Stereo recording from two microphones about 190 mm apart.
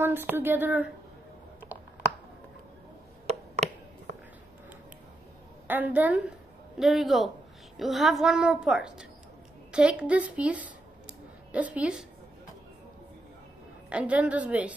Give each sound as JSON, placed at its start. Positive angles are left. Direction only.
{"t": 0.0, "sound": "a woman's voice", "side_deg": -10}
{"t": 3.3, "sound": "a sound", "side_deg": -35}
{"t": 5.7, "sound": "a woman's voice", "side_deg": -10}
{"t": 13.8, "sound": "a woman's voice", "side_deg": -5}